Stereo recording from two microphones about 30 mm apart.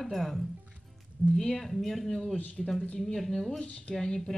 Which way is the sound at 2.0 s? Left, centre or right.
Centre.